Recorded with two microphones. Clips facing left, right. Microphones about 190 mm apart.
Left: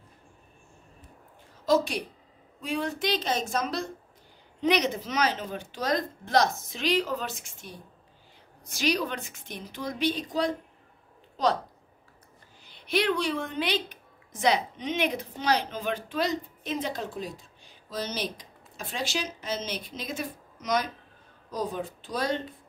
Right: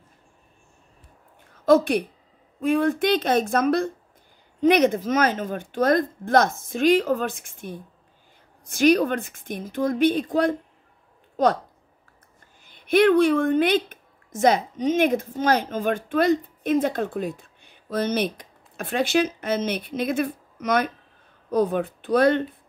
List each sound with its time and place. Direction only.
1.7 s a woman's voice: 55° right (ahead or behind)
12.6 s a woman's voice: 50° right (ahead or behind)